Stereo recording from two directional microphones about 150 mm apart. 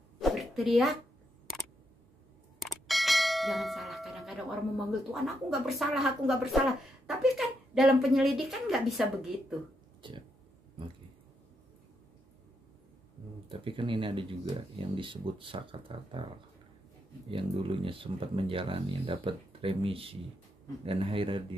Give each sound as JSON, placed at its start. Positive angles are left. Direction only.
{"t": 0.2, "sound": "a sound", "side_deg": 0}
{"t": 2.6, "sound": "church bell", "side_deg": 0}
{"t": 5.1, "sound": "a woman's voice", "side_deg": 0}
{"t": 10.0, "sound": "speech", "side_deg": -35}
{"t": 13.5, "sound": "speech", "side_deg": -35}
{"t": 17.3, "sound": "speech", "side_deg": -35}